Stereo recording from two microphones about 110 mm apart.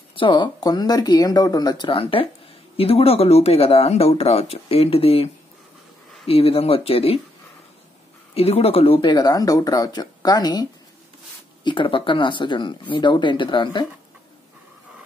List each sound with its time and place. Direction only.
0.1 s speech: 50° left (ahead or behind)
1.9 s speech: 55° left (ahead or behind)
2.8 s speech: 65° left (ahead or behind)
8.4 s speech: 65° left (ahead or behind)
9.0 s speech: 40° left (ahead or behind)
11.6 s speech: 50° left (ahead or behind)